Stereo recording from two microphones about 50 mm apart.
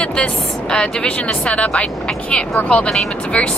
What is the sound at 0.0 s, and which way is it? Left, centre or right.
Speech, centre.